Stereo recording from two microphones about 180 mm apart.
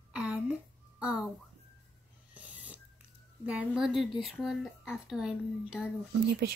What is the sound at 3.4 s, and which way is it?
Speech, 5° right (ahead or behind).